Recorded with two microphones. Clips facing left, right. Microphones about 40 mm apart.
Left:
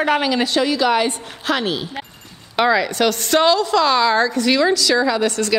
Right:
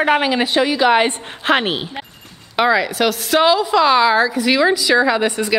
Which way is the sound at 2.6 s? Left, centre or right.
Centre.